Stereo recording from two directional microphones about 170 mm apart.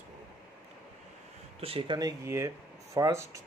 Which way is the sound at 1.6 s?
30° right (ahead or behind).